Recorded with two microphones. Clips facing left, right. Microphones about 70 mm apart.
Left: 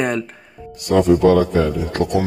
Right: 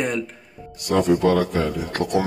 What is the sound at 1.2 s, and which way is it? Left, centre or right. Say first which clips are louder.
Speech: left 5 dB; left.